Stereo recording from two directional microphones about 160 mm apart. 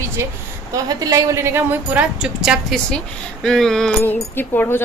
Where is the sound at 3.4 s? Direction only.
5° left (ahead or behind).